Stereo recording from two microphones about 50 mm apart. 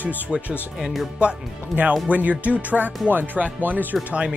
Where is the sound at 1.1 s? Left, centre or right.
Right.